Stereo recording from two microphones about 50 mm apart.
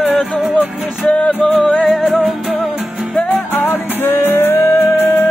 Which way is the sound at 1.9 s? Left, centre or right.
Centre.